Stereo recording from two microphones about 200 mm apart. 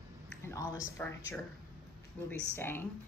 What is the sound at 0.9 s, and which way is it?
A woman's voice, 10° left (ahead or behind).